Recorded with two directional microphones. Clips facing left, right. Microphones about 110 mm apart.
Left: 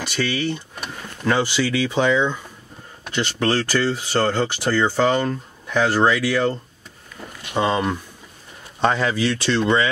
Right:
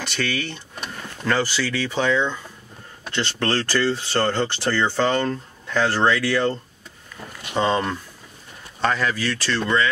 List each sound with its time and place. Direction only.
0.0 s speech: 10° left (ahead or behind)
8.8 s speech: 20° left (ahead or behind)